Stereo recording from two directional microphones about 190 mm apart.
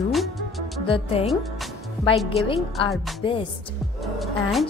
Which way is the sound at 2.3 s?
30° left (ahead or behind).